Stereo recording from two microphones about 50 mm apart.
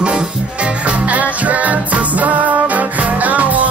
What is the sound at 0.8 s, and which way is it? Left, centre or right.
Music, right.